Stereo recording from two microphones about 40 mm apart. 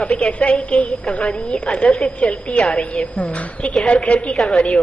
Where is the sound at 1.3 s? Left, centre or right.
Left.